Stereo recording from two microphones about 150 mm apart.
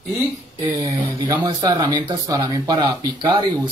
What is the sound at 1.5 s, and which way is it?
Speech, 30° right (ahead or behind).